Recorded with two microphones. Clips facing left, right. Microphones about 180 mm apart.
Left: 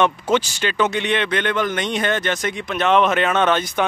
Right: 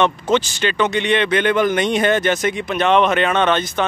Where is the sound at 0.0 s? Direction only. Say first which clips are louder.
Right 1 dB; 10° left (ahead or behind).